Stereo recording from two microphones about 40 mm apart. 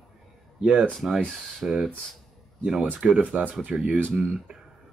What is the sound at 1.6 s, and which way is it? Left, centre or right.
Speech, right.